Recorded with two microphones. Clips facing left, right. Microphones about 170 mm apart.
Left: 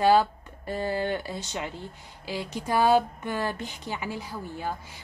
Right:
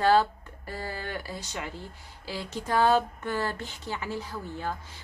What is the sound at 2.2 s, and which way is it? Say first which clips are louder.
Speech: left 2 dB; 15° left (ahead or behind).